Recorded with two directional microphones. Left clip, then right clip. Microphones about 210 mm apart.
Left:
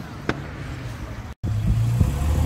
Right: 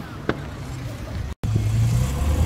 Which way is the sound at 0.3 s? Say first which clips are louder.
Right 1 dB; 50° left (ahead or behind).